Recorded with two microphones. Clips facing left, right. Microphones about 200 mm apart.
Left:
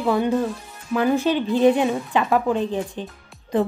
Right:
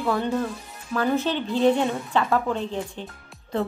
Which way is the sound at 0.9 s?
15° left (ahead or behind).